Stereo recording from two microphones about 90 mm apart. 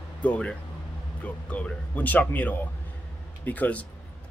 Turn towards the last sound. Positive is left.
turn(degrees=15)  # may be behind; listen again after turning